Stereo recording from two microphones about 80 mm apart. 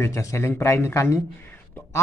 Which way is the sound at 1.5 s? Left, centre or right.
Left.